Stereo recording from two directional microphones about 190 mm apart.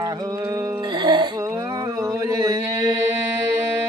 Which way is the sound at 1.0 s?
25° right (ahead or behind).